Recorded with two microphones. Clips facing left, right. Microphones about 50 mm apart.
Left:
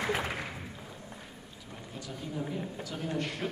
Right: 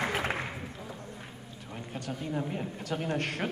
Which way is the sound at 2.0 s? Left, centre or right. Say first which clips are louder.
Right 3 dB; right.